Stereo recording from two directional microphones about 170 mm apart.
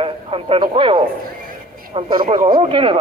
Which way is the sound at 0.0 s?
35° right (ahead or behind).